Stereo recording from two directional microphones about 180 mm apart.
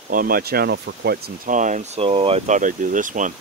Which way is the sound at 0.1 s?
55° right (ahead or behind).